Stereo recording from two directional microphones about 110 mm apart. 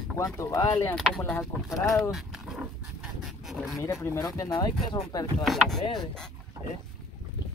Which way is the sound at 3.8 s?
25° left (ahead or behind).